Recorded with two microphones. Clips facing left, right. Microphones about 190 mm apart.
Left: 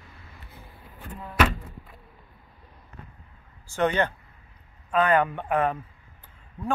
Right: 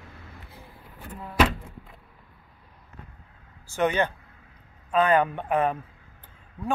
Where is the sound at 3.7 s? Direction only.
15° right (ahead or behind).